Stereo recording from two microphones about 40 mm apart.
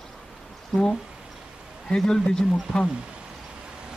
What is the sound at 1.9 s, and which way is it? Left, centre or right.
Speech, centre.